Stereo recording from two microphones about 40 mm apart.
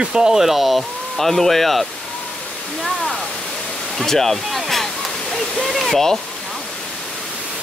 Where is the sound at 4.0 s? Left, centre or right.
Centre.